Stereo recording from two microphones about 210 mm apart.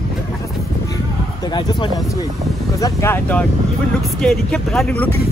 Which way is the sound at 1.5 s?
20° left (ahead or behind).